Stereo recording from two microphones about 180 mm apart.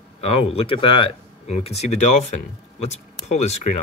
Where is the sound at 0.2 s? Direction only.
35° left (ahead or behind).